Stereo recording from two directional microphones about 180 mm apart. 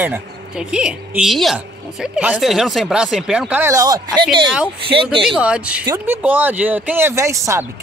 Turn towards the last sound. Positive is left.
turn(degrees=-15)  # may be behind; listen again after turning